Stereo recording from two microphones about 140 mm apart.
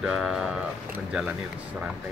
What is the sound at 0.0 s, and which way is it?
Speech, centre (ahead or behind).